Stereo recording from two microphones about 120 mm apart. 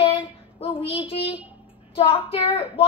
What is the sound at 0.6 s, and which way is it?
A woman's voice, 55° left (ahead or behind).